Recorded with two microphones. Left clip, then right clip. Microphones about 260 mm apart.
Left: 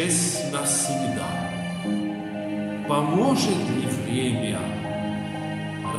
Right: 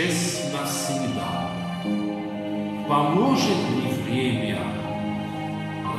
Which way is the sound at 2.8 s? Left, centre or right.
Left.